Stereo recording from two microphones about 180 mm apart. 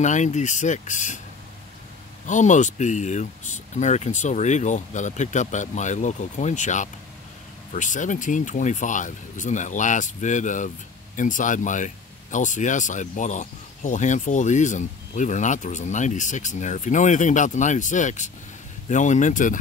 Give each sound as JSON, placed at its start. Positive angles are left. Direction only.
{"t": 0.0, "sound": "speech", "side_deg": 40}
{"t": 2.2, "sound": "speech", "side_deg": 45}